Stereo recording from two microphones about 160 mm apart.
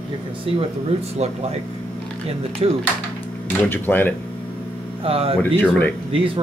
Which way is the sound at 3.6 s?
10° left (ahead or behind).